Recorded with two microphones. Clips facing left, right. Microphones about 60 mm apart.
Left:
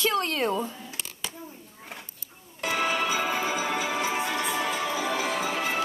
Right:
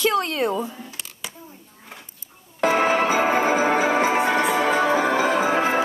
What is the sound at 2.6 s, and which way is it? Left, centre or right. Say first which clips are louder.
Music: right 8 dB; right.